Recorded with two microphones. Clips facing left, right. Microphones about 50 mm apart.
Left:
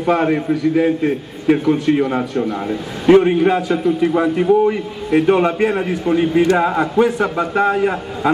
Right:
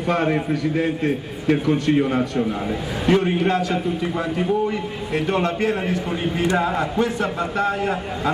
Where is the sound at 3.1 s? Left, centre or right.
Centre.